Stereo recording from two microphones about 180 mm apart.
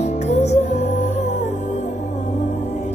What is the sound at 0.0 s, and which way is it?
Music, 40° left (ahead or behind).